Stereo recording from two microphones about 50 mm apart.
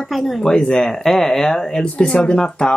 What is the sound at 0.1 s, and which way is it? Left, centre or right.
Speech, centre.